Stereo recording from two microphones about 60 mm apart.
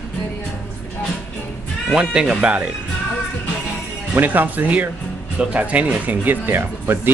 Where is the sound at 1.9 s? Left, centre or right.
Centre.